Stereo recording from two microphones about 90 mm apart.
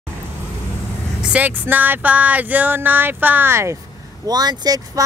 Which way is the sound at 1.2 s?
15° right (ahead or behind).